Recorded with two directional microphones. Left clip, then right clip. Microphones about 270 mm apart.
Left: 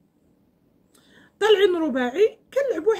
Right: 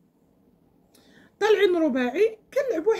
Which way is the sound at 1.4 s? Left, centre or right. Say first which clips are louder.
Left 2 dB; centre.